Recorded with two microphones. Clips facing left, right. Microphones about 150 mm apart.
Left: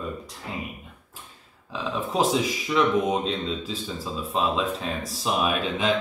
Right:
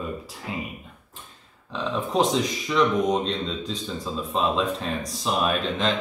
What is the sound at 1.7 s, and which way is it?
Speech, 5° left (ahead or behind).